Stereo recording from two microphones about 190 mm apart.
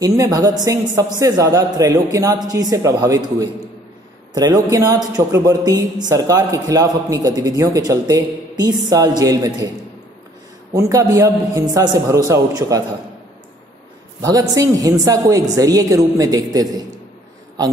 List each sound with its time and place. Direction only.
0.0 s a man's voice: 20° right (ahead or behind)
10.7 s a man's voice: 15° right (ahead or behind)
14.2 s a man's voice: 20° right (ahead or behind)